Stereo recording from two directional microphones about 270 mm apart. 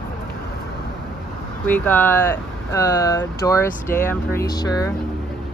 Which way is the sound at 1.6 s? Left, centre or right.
Centre.